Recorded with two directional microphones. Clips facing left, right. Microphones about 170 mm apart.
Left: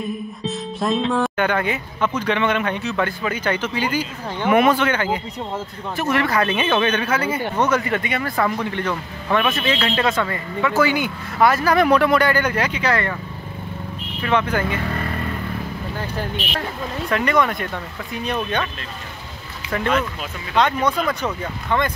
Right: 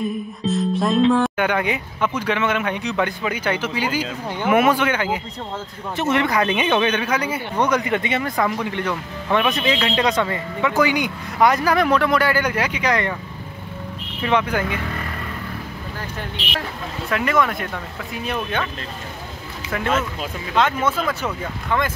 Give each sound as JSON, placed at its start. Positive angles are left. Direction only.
{"t": 0.5, "sound": "music", "side_deg": 0}
{"t": 1.3, "sound": "speech", "side_deg": -10}
{"t": 5.9, "sound": "speech", "side_deg": -20}
{"t": 11.9, "sound": "speech", "side_deg": 10}
{"t": 12.2, "sound": "speech", "side_deg": -10}
{"t": 14.2, "sound": "speech", "side_deg": -10}
{"t": 17.1, "sound": "speech", "side_deg": 0}
{"t": 19.7, "sound": "speech", "side_deg": -5}